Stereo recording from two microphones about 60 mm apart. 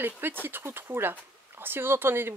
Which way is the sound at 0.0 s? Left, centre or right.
Right.